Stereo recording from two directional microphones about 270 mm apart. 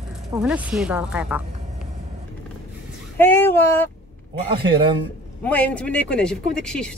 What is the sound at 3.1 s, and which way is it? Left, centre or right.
Child singing, centre.